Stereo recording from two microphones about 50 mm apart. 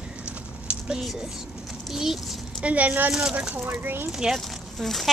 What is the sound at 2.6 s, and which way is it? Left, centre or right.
Speech, right.